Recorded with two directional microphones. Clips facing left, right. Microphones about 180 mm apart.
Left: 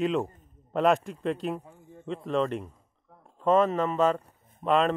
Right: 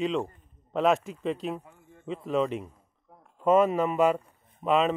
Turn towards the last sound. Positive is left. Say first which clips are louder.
# even
turn(degrees=-5)  # may be behind; listen again after turning